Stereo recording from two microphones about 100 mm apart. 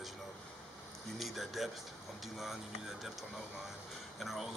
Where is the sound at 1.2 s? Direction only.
Centre (ahead or behind).